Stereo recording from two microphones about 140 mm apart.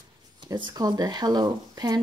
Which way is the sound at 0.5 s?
30° right (ahead or behind).